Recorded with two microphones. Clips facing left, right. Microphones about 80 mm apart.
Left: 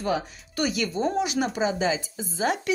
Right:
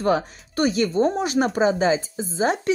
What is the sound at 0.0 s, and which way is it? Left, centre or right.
Speech, right.